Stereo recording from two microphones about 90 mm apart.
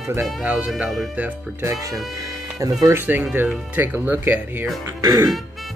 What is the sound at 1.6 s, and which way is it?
Speech, 35° right (ahead or behind).